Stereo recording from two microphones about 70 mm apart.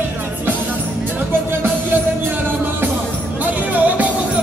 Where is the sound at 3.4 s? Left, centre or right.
Right.